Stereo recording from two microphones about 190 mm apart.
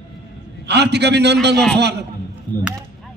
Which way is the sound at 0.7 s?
65° right (ahead or behind).